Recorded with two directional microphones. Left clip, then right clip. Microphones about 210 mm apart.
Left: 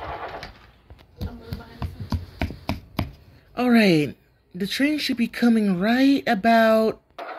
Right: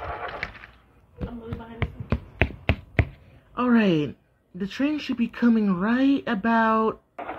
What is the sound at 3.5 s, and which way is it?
A woman's voice, 10° left (ahead or behind).